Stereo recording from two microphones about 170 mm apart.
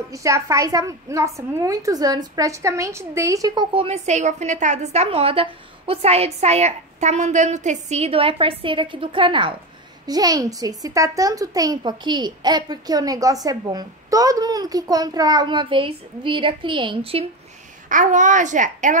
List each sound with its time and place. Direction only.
0.1 s a woman's voice: 20° right (ahead or behind); by 17.3 s 35° right (ahead or behind)
17.8 s a child's voice: 50° right (ahead or behind)